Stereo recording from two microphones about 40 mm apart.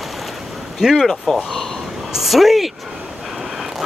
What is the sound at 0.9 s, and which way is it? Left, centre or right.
Speech, centre.